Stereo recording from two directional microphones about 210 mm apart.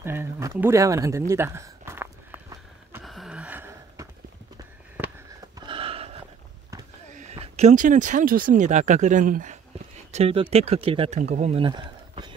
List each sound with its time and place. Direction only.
0.0 s speech: 10° right (ahead or behind)
3.0 s gasp: centre (ahead or behind)
4.6 s a sound: 10° right (ahead or behind)
5.7 s a sound: 25° right (ahead or behind)
7.1 s speech: 35° right (ahead or behind)
10.1 s speech: 25° right (ahead or behind)